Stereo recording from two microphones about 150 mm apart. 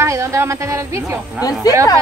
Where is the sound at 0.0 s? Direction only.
20° right (ahead or behind).